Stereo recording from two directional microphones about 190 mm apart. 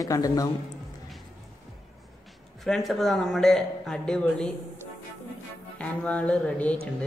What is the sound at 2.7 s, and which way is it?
Speech, centre (ahead or behind).